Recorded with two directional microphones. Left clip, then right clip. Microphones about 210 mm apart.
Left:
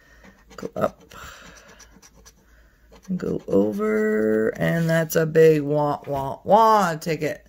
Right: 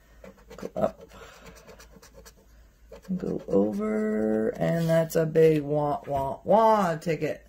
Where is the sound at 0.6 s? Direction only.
45° left (ahead or behind).